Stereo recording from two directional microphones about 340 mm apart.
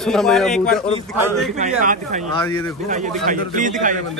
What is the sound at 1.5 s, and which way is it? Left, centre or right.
A man's voice, right.